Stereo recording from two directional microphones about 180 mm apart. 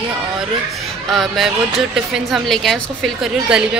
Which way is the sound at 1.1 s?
Centre (ahead or behind).